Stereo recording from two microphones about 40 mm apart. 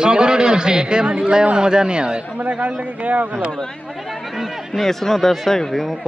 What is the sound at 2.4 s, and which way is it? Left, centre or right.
Speech, right.